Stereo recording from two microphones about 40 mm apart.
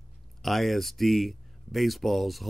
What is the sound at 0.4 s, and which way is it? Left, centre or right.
Speech, centre.